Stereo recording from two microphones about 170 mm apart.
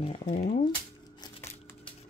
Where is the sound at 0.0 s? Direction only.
30° left (ahead or behind).